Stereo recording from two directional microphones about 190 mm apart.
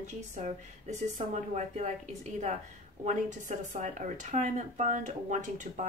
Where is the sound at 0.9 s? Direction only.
40° right (ahead or behind).